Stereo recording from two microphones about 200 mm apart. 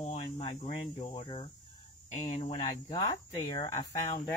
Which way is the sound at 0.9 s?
35° left (ahead or behind).